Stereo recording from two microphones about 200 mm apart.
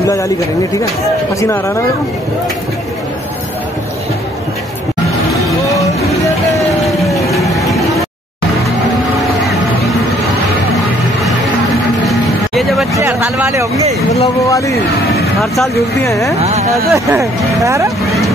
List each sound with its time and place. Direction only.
0.0 s speech: 15° left (ahead or behind)
5.7 s music: 15° left (ahead or behind)
7.0 s music: centre (ahead or behind)
12.1 s vehicle: centre (ahead or behind)
12.9 s speech: 10° right (ahead or behind)
16.0 s speech: 15° left (ahead or behind)
16.3 s speech: 35° right (ahead or behind)
16.7 s speech: 15° right (ahead or behind)